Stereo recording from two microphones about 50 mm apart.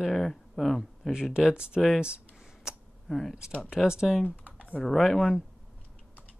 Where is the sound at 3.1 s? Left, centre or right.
Centre.